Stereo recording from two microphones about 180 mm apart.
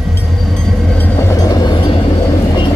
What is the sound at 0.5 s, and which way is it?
Vehicle, 5° left (ahead or behind).